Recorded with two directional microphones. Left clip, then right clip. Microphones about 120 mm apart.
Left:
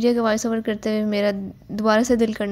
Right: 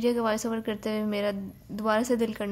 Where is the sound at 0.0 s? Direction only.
25° left (ahead or behind).